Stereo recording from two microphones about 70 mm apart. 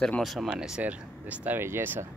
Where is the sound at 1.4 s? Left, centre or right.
Right.